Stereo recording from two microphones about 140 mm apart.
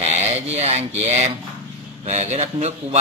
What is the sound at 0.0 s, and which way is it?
Speech, 55° right (ahead or behind).